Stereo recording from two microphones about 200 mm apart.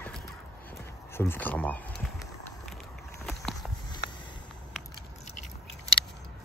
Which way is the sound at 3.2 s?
5° left (ahead or behind).